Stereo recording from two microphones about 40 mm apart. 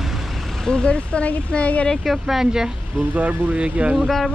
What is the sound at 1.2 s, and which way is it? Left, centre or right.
Speech, left.